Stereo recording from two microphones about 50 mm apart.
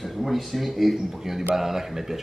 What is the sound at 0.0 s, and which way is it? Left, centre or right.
Speech, centre.